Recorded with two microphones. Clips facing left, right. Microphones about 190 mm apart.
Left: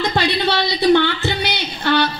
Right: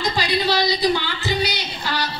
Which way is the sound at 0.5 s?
65° left (ahead or behind).